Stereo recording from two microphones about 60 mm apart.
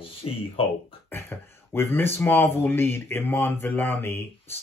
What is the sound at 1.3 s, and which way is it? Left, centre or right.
Speech, left.